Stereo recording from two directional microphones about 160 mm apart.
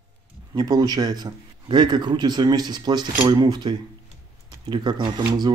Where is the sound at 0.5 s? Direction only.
25° right (ahead or behind).